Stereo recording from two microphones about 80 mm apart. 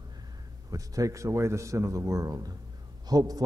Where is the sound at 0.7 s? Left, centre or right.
Right.